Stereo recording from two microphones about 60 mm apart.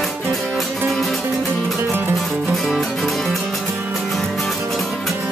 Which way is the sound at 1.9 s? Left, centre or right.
Right.